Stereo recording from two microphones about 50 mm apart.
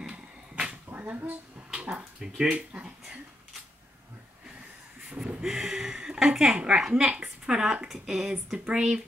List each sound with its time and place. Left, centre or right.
0.1 s dog: right
0.9 s speech: right
1.7 s a sound: right
2.2 s speech: centre
5.4 s a sound: centre
6.1 s speech: centre
6.5 s a woman's voice: right